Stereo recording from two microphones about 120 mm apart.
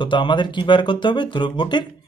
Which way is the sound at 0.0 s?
40° left (ahead or behind).